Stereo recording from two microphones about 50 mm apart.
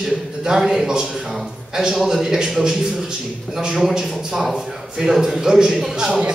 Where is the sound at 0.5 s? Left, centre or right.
Centre.